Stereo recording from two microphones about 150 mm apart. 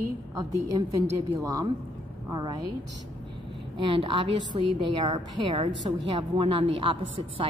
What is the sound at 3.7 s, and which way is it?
A woman's voice, 35° right (ahead or behind).